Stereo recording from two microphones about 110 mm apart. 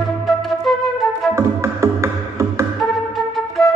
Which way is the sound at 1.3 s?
25° right (ahead or behind).